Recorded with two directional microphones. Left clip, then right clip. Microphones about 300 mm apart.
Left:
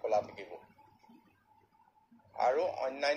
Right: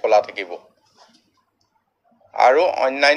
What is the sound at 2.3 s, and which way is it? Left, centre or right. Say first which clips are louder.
Speech: right 16 dB; right.